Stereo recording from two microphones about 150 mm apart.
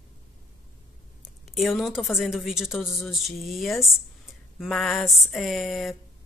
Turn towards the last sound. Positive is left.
turn(degrees=0)  # may be behind; listen again after turning